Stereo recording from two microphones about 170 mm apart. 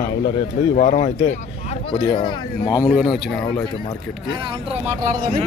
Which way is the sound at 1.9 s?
30° left (ahead or behind).